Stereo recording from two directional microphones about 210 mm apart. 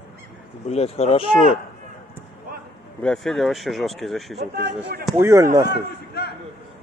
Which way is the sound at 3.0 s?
Centre (ahead or behind).